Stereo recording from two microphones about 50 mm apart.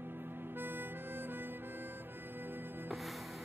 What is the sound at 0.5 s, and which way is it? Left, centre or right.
Music, right.